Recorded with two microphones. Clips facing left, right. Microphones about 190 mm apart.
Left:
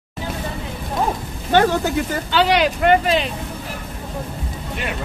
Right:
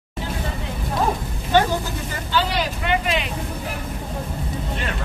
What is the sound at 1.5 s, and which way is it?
Speech, 75° left (ahead or behind).